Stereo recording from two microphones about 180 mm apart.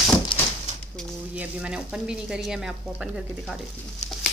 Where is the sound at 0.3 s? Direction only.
30° left (ahead or behind).